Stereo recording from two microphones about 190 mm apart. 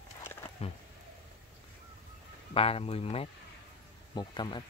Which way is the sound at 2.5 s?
30° left (ahead or behind).